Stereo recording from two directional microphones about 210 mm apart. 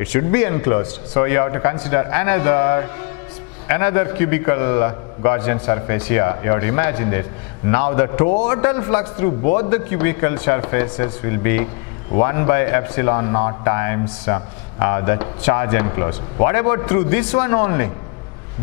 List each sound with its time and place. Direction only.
0.0 s a man's voice: 10° left (ahead or behind)